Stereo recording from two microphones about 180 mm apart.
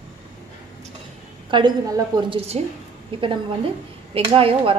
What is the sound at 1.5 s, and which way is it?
A woman's voice, 25° right (ahead or behind).